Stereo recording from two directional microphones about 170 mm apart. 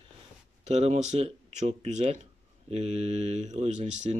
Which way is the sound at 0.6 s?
40° right (ahead or behind).